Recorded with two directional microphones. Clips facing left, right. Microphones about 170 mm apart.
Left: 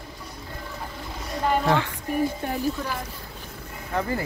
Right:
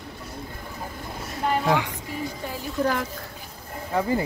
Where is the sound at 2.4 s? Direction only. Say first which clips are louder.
Left 4 dB; 55° left (ahead or behind).